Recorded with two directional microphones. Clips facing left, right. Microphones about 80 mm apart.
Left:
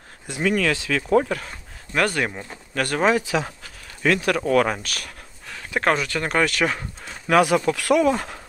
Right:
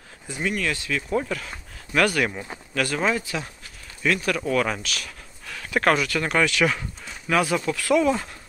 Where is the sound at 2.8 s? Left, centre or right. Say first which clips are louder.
Left 4 dB; left.